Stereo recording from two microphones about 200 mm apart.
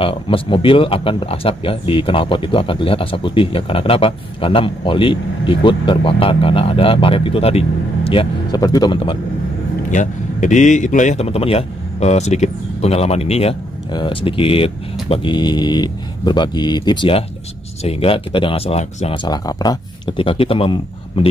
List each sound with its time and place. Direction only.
0.0 s speech: 25° left (ahead or behind)
9.8 s speech: 40° left (ahead or behind)